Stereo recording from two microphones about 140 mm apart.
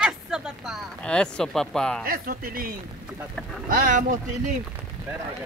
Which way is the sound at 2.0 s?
90° right.